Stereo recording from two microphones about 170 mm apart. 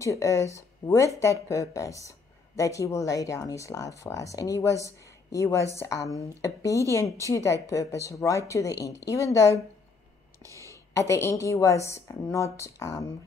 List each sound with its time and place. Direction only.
0.0 s speech: 20° left (ahead or behind)
10.4 s a sound: 20° right (ahead or behind)
10.7 s a woman's voice: 15° left (ahead or behind)